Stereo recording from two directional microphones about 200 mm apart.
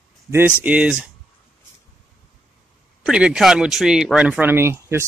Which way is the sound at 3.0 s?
5° right (ahead or behind).